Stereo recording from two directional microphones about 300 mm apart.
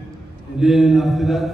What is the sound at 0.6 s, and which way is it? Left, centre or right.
Mantra, centre.